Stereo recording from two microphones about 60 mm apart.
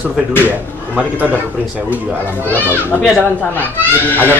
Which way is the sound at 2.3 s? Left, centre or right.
Left.